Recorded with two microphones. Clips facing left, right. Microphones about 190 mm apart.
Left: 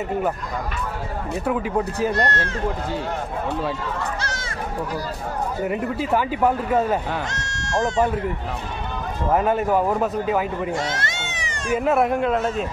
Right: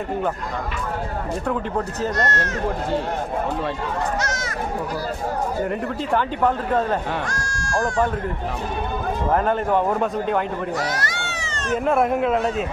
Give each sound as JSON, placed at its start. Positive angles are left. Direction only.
{"t": 1.5, "sound": "speech", "side_deg": 10}
{"t": 2.2, "sound": "speech", "side_deg": 30}
{"t": 5.7, "sound": "speech", "side_deg": 5}
{"t": 7.2, "sound": "bleat", "side_deg": 20}
{"t": 9.3, "sound": "speech", "side_deg": 5}
{"t": 10.8, "sound": "a sound", "side_deg": 25}
{"t": 11.8, "sound": "speech", "side_deg": 0}